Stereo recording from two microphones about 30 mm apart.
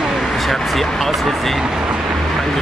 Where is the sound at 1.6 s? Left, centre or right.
Centre.